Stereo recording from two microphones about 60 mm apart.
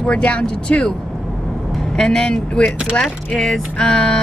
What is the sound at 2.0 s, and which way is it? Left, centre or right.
Speech, centre.